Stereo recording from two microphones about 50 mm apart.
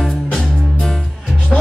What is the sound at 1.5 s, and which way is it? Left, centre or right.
Music, centre.